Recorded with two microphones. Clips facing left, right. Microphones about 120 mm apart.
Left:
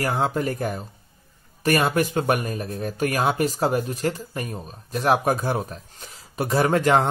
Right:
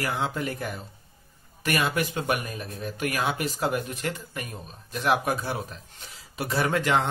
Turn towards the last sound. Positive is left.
turn(degrees=45)  # may be behind; listen again after turning